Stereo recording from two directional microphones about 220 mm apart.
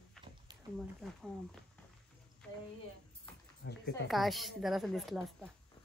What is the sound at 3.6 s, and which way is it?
Speech, 50° left (ahead or behind).